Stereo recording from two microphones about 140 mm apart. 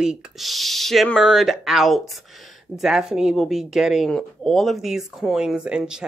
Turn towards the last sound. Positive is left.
turn(degrees=-5)  # may be behind; listen again after turning